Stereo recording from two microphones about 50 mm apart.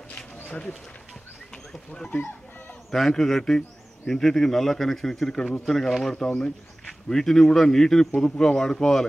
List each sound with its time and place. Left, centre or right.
2.0 s speech: left
2.9 s a man's voice: centre